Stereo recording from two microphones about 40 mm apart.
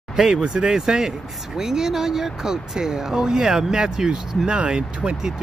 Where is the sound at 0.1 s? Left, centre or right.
Centre.